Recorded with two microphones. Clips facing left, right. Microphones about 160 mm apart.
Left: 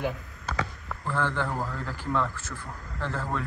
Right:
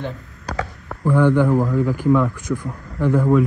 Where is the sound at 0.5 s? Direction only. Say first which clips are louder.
Right 5 dB; 40° right (ahead or behind).